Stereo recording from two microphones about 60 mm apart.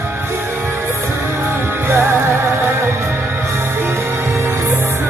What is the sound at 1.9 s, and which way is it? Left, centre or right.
Music, right.